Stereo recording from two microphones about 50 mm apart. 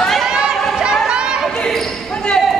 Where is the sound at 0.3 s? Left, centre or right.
Centre.